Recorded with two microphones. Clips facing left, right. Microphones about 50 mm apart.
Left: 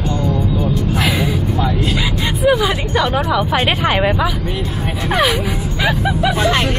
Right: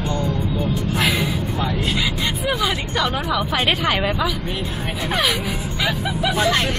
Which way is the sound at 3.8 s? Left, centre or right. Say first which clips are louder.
Left 5 dB; left.